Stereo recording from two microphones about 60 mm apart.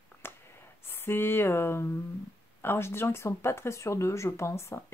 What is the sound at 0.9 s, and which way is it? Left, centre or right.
Speech, left.